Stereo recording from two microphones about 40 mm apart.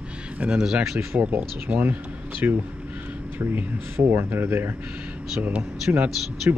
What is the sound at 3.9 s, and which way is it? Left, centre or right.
Speech, right.